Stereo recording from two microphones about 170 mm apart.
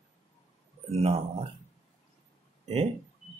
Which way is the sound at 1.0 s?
35° right (ahead or behind).